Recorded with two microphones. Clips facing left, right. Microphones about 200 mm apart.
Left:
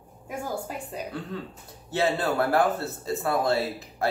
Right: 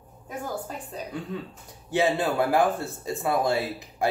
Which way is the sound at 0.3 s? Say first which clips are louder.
Left 1 dB; 10° left (ahead or behind).